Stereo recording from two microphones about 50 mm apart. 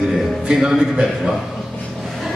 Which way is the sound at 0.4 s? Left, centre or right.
Centre.